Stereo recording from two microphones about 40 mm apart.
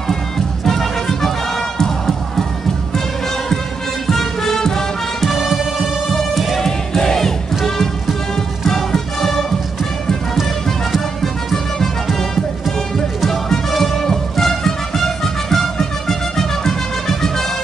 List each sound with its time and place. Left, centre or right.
0.7 s music: centre
4.1 s music: centre
5.3 s music: centre
6.6 s battle cry: centre
8.6 s music: centre
11.5 s music: centre